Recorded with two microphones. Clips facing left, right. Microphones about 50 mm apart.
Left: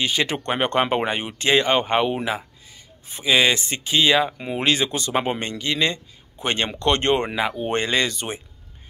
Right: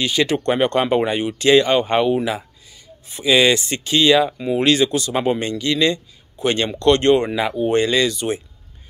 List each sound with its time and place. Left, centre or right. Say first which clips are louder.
0.0 s speech: right 4 dB; left
7.3 s speech: right 3 dB; centre
7.6 s speech: right 7 dB; left